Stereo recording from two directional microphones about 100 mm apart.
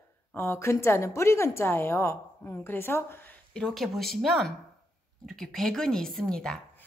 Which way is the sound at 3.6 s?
5° left (ahead or behind).